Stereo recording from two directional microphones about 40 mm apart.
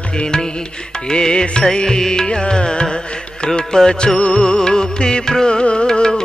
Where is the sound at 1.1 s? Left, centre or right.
Left.